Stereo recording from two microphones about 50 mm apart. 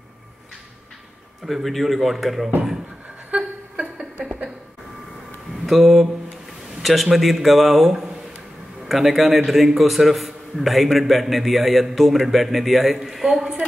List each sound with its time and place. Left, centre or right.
1.4 s a man's voice: centre
3.3 s a sound: right
5.7 s a man's voice: centre